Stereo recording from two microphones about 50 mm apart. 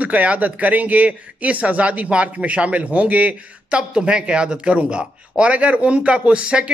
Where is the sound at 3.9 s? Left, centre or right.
Centre.